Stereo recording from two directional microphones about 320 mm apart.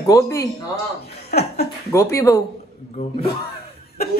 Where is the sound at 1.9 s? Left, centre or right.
Centre.